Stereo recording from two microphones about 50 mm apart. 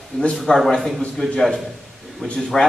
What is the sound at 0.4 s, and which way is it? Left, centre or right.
Speech, centre.